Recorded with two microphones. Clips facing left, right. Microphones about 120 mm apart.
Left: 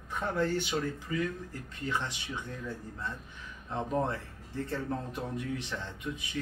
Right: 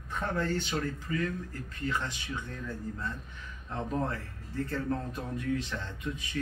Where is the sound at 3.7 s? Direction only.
15° left (ahead or behind).